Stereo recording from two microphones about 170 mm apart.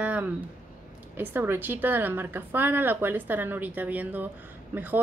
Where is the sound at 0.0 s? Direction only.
10° right (ahead or behind).